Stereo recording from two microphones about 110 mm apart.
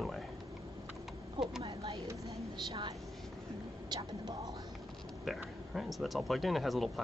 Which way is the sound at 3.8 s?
40° right (ahead or behind).